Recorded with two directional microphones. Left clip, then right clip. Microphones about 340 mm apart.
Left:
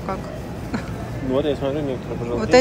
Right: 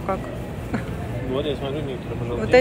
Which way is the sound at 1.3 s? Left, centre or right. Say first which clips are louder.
Left 5 dB; left.